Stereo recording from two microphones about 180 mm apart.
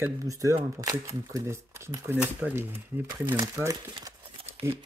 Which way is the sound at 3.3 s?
20° right (ahead or behind).